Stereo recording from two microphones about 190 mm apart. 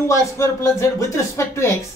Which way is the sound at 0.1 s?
15° left (ahead or behind).